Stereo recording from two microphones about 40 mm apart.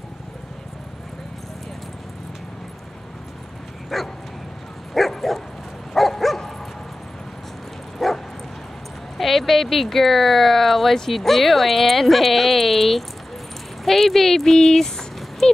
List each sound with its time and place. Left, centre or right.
3.9 s bow-wow: centre
5.9 s dog: centre
8.0 s dog: centre
9.2 s speech: centre